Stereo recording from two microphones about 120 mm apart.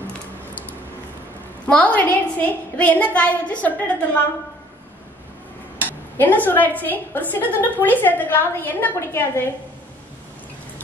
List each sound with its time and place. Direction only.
1.7 s a woman's voice: 10° left (ahead or behind)
5.8 s a woman's voice: 15° left (ahead or behind)